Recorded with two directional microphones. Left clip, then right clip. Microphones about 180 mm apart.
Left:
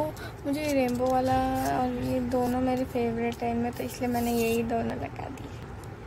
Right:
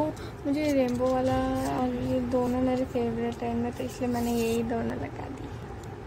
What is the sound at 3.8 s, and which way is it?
A woman's voice, centre (ahead or behind).